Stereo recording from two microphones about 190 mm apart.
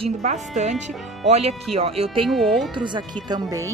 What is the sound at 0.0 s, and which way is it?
Speech, 40° right (ahead or behind).